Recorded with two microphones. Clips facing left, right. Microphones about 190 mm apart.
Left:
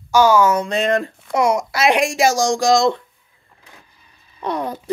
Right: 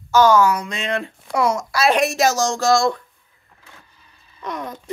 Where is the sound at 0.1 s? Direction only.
10° left (ahead or behind).